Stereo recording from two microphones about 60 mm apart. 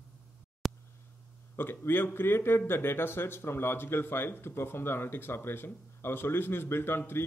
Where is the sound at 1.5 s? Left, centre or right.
Left.